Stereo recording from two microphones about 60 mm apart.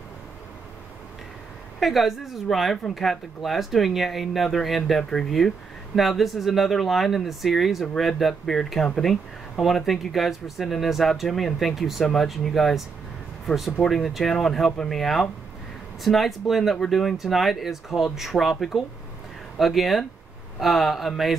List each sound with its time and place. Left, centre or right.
1.8 s speech: centre
13.8 s speech: centre